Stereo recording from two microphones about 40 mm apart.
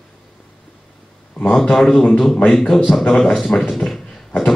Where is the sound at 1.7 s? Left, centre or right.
Centre.